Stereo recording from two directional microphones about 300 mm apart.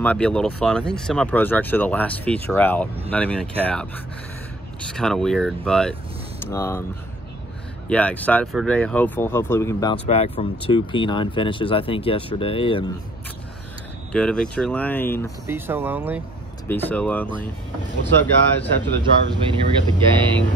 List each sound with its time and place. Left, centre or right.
0.0 s speech: centre
7.9 s speech: centre
10.0 s speech: left
14.1 s speech: centre
15.4 s speech: centre
16.6 s speech: centre
19.5 s speech: centre